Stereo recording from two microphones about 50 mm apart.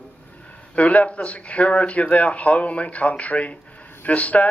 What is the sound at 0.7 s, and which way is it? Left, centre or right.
Speech, left.